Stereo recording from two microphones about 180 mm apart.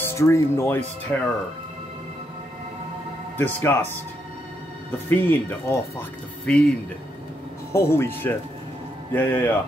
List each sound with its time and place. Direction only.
0.0 s speech: 15° left (ahead or behind)
3.3 s speech: 10° left (ahead or behind)
5.1 s speech: 15° left (ahead or behind)
7.7 s speech: 15° left (ahead or behind)